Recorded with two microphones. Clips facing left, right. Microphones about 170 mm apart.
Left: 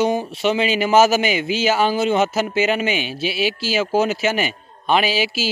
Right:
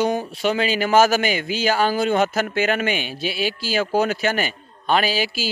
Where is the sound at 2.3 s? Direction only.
5° left (ahead or behind).